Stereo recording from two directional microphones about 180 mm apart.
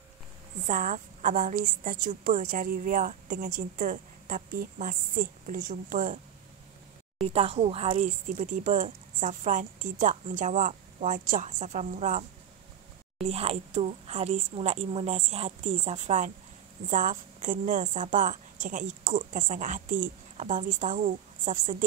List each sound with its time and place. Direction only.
0.7 s a woman's voice: 45° right (ahead or behind)
7.2 s a woman's voice: 35° right (ahead or behind)